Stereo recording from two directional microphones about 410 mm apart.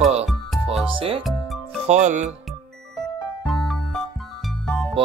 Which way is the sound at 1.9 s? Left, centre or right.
Centre.